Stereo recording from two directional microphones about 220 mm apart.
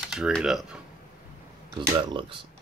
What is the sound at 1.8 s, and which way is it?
Speech, 20° right (ahead or behind).